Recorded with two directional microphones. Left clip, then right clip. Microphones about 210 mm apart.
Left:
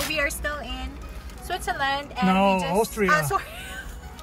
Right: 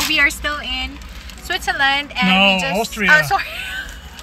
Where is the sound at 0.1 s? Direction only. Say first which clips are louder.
Right 10 dB; 5° left (ahead or behind).